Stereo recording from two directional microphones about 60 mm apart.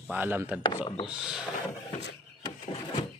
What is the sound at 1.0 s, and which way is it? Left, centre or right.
Speech, centre.